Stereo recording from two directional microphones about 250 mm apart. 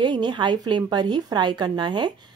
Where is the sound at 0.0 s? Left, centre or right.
Centre.